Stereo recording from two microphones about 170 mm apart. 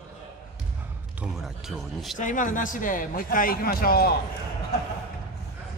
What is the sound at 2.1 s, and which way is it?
Speech, 50° left (ahead or behind).